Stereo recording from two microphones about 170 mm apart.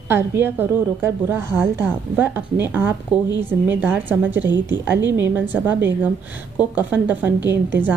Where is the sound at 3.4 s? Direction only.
10° right (ahead or behind).